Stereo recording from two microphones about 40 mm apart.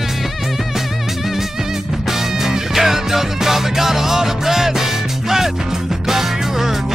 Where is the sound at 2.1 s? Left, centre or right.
Centre.